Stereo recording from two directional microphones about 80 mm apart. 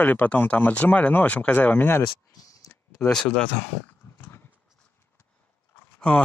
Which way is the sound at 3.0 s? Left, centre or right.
Centre.